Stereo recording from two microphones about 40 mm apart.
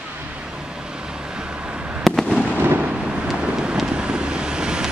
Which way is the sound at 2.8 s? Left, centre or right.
Right.